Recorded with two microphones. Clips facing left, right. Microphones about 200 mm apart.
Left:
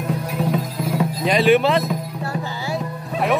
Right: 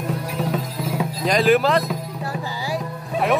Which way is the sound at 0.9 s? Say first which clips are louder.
Left 1 dB; centre (ahead or behind).